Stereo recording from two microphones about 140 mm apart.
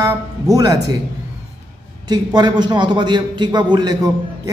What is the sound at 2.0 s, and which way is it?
A man's voice, 30° right (ahead or behind).